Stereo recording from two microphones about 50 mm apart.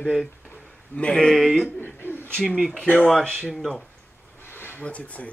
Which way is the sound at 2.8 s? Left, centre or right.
Left.